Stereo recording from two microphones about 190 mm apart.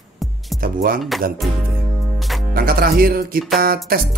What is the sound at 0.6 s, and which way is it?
Speech, 50° right (ahead or behind).